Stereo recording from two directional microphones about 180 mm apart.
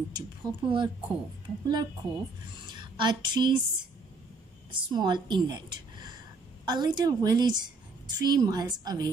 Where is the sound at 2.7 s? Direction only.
25° right (ahead or behind).